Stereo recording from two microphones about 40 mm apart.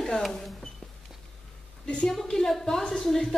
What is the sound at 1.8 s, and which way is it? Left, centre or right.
Speech, left.